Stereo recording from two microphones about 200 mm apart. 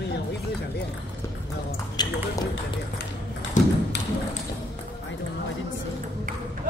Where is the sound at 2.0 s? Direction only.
20° left (ahead or behind).